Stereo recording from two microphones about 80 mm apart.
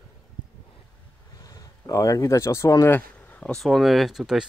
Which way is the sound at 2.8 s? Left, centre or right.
Left.